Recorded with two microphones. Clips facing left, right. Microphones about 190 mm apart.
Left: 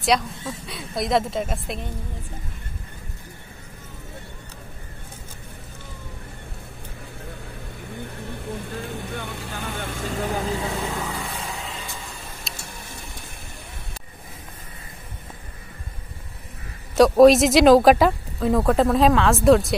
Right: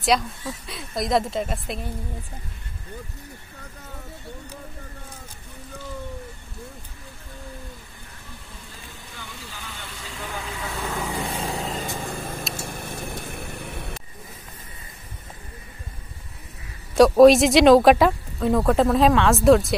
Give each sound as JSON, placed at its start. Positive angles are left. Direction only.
{"t": 0.0, "sound": "speech", "side_deg": 0}
{"t": 7.9, "sound": "vehicle", "side_deg": 65}
{"t": 11.2, "sound": "vehicle", "side_deg": -35}
{"t": 12.5, "sound": "a sound", "side_deg": -55}
{"t": 16.9, "sound": "speech", "side_deg": 0}